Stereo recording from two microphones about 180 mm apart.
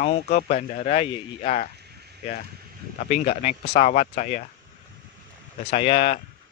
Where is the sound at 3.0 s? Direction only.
40° left (ahead or behind).